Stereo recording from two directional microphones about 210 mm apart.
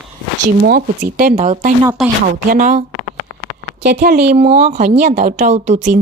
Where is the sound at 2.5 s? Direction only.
40° right (ahead or behind).